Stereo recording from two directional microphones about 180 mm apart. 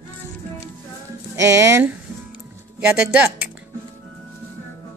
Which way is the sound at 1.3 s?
15° right (ahead or behind).